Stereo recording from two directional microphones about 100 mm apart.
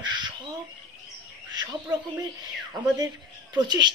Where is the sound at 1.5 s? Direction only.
45° right (ahead or behind).